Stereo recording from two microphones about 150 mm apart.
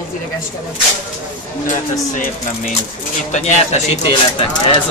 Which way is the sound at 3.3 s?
50° left (ahead or behind).